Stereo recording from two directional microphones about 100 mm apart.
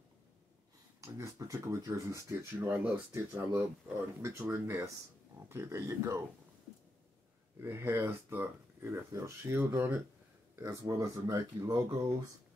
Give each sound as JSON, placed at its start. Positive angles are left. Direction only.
{"t": 1.0, "sound": "speech", "side_deg": -30}
{"t": 7.5, "sound": "speech", "side_deg": -25}